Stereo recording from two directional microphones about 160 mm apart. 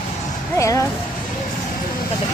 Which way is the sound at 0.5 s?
20° left (ahead or behind).